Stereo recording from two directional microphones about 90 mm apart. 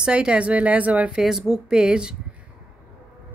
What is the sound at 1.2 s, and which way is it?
Speech, 5° right (ahead or behind).